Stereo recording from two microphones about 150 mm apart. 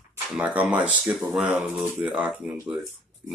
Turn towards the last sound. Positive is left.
turn(degrees=-10)  # may be behind; listen again after turning